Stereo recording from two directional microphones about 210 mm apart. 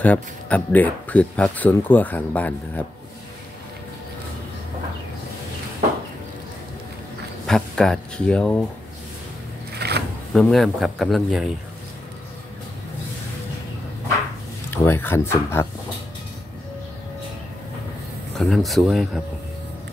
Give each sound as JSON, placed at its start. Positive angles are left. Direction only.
{"t": 0.0, "sound": "speech", "side_deg": 5}
{"t": 7.4, "sound": "speech", "side_deg": 5}
{"t": 9.8, "sound": "drawer open or close", "side_deg": -50}
{"t": 10.3, "sound": "speech", "side_deg": 0}
{"t": 14.7, "sound": "speech", "side_deg": 10}
{"t": 18.4, "sound": "speech", "side_deg": 0}